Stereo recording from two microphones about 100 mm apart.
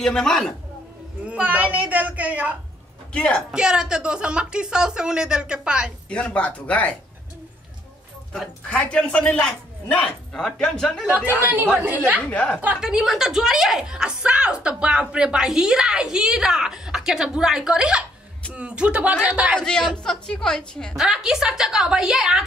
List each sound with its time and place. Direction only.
0.0 s a woman's voice: 5° left (ahead or behind)
1.2 s a woman's voice: 15° right (ahead or behind)
3.1 s a woman's voice: 10° left (ahead or behind)
3.5 s a woman's voice: 10° right (ahead or behind)
6.0 s a man's voice: 15° left (ahead or behind)
8.3 s a man's voice: 10° left (ahead or behind)
11.1 s a woman's voice: 15° right (ahead or behind)
12.2 s a man's voice: 15° left (ahead or behind)
12.8 s a woman's voice: 5° right (ahead or behind)
19.6 s a man's voice: 5° left (ahead or behind)
20.9 s a woman's voice: 5° right (ahead or behind)